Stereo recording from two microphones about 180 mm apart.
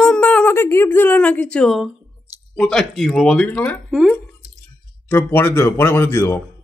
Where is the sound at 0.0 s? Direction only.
5° left (ahead or behind).